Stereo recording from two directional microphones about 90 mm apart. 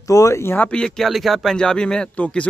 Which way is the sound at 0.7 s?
10° left (ahead or behind).